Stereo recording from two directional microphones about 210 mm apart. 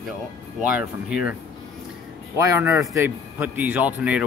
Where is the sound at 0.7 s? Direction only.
5° right (ahead or behind).